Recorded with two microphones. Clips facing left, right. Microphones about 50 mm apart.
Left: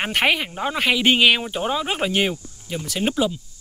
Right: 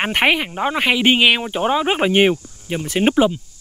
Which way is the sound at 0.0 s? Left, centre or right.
Centre.